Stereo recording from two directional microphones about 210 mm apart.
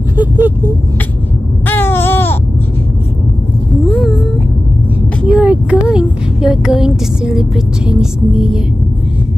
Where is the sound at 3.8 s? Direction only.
Centre (ahead or behind).